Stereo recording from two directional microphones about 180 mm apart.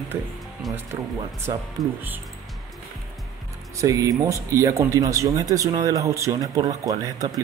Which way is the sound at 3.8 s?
20° right (ahead or behind).